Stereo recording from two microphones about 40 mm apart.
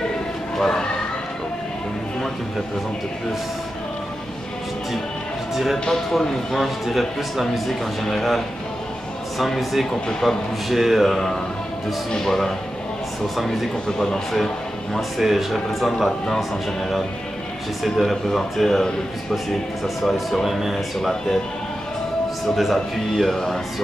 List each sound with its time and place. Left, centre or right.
0.6 s speech: centre
5.5 s speech: centre
5.9 s speech: centre
13.8 s speech: centre
15.0 s speech: centre
17.8 s speech: centre
22.6 s speech: centre